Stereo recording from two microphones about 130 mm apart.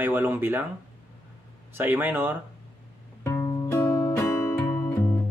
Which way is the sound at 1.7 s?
15° right (ahead or behind).